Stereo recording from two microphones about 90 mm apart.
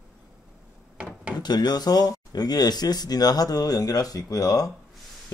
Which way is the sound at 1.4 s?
50° left (ahead or behind).